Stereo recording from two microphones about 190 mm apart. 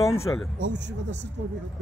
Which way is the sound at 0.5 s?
70° right (ahead or behind).